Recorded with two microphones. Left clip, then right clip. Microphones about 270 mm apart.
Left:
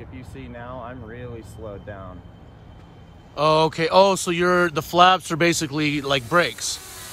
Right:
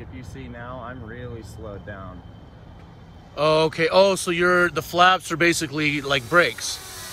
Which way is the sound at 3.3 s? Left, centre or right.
Centre.